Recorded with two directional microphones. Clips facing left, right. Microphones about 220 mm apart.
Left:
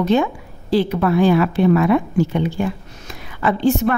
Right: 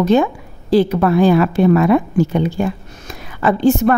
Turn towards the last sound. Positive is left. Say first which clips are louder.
# right 4 dB
turn(degrees=-45)  # may be behind; listen again after turning